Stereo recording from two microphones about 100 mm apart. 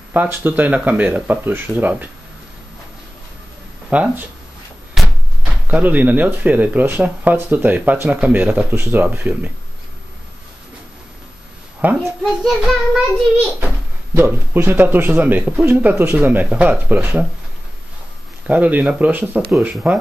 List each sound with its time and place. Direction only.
0.1 s speech: 20° right (ahead or behind)
3.9 s speech: 15° right (ahead or behind)
5.0 s a sound: centre (ahead or behind)
5.4 s speech: 15° right (ahead or behind)
12.0 s a child's voice: centre (ahead or behind)
14.1 s speech: 20° right (ahead or behind)
18.5 s speech: 15° right (ahead or behind)